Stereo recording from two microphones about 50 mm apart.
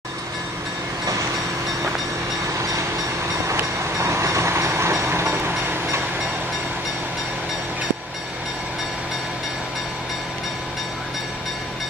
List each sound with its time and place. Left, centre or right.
3.4 s train: right